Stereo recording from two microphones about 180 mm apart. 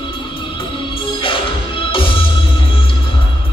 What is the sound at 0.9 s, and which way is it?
Music, 30° left (ahead or behind).